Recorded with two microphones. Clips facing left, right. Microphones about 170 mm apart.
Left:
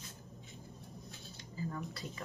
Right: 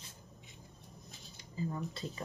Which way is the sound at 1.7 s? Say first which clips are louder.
Right 2 dB; 25° right (ahead or behind).